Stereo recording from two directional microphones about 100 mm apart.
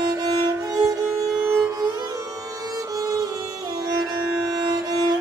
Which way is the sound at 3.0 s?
35° right (ahead or behind).